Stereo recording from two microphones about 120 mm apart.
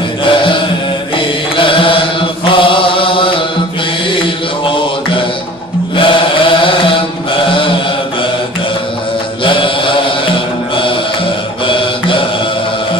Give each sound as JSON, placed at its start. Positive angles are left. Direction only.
{"t": 0.2, "sound": "chant", "side_deg": 45}
{"t": 1.1, "sound": "mantra", "side_deg": 45}
{"t": 2.4, "sound": "chant", "side_deg": 45}
{"t": 5.9, "sound": "chant", "side_deg": 45}
{"t": 9.4, "sound": "mantra", "side_deg": 45}
{"t": 11.6, "sound": "music", "side_deg": 45}